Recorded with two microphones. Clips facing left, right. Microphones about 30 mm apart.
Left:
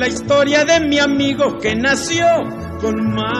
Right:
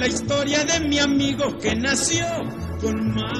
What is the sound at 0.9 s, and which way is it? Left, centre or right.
Speech, centre.